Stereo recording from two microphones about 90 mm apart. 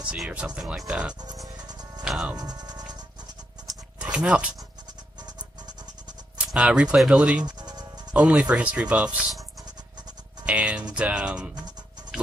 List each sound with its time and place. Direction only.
0.6 s speech: 10° right (ahead or behind)
1.6 s music: 50° right (ahead or behind)
2.0 s speech: 5° right (ahead or behind)
2.3 s cricket: 50° right (ahead or behind)
4.0 s speech: 10° right (ahead or behind)
6.3 s speech: 10° right (ahead or behind)
7.4 s music: 50° right (ahead or behind)
8.1 s speech: 10° right (ahead or behind)
10.4 s speech: 10° right (ahead or behind)